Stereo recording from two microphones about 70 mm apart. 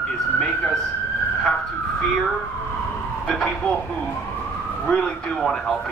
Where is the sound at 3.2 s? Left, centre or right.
Centre.